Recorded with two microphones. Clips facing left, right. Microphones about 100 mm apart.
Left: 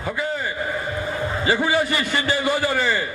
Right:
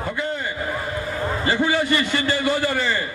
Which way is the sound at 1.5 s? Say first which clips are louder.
Even; 15° left (ahead or behind).